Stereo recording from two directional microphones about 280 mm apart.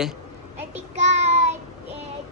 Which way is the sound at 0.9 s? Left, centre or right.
Right.